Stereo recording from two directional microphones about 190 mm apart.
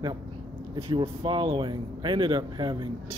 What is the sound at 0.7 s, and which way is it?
Speech, 25° right (ahead or behind).